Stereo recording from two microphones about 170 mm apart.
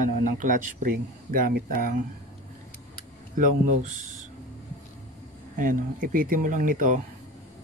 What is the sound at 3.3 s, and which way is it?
Speech, 50° right (ahead or behind).